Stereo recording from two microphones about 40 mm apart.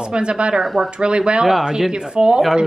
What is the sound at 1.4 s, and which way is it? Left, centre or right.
Speech, centre.